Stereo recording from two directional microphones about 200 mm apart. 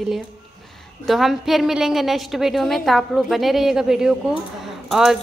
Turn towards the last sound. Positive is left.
turn(degrees=0)  # may be behind; listen again after turning